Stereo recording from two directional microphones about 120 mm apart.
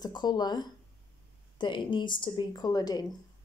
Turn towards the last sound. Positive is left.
turn(degrees=35)  # may be behind; listen again after turning